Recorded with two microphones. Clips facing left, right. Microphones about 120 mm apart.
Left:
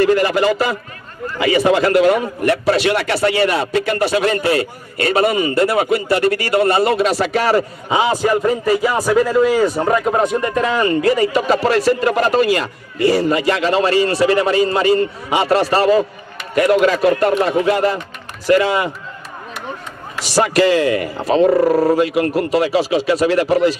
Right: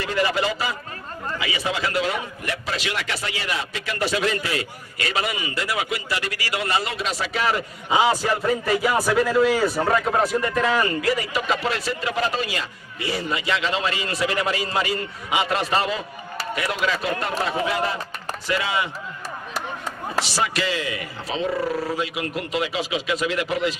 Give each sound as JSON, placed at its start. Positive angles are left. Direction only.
{"t": 0.0, "sound": "a man's voice", "side_deg": 50}
{"t": 8.2, "sound": "speech", "side_deg": 15}
{"t": 9.2, "sound": "speech", "side_deg": 40}
{"t": 9.8, "sound": "speech", "side_deg": 25}
{"t": 20.3, "sound": "speech", "side_deg": 50}